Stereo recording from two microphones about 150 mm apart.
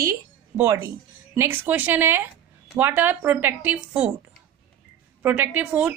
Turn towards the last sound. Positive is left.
turn(degrees=-10)  # may be behind; listen again after turning